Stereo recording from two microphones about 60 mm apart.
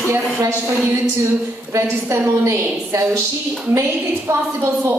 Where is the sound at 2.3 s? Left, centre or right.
Right.